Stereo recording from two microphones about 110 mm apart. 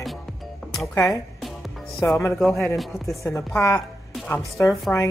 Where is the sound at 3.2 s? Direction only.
25° left (ahead or behind).